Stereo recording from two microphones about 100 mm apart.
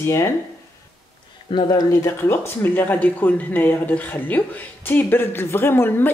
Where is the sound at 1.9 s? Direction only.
25° left (ahead or behind).